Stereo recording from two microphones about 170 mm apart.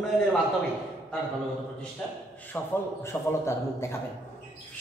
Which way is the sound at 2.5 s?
10° left (ahead or behind).